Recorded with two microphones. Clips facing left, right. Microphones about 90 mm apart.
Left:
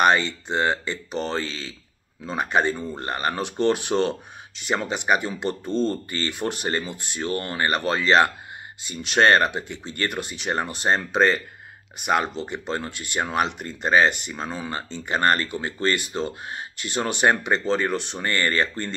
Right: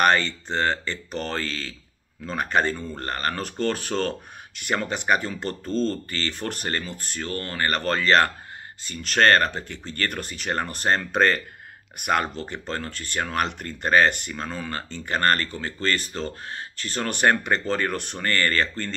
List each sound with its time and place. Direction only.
0.0 s speech: 10° left (ahead or behind)
7.6 s speech: 10° left (ahead or behind)
18.2 s speech: 15° left (ahead or behind)